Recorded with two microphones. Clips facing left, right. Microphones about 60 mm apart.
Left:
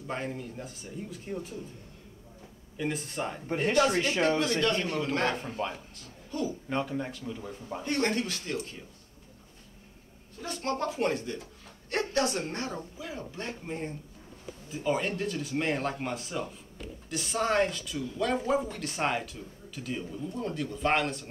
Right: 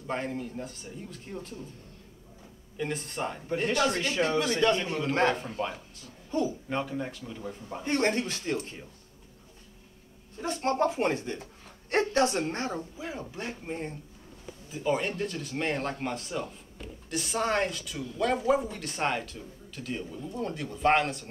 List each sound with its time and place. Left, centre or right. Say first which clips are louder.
0.0 s speech: right 2 dB; centre
2.8 s speech: even; centre
4.4 s a man's voice: right 2 dB; centre
5.6 s speech: right 1 dB; centre
6.3 s speech: right 4 dB; right
6.7 s speech: even; centre
7.8 s speech: right 2 dB; right
10.4 s a woman's voice: right 5 dB; right
13.4 s speech: even; centre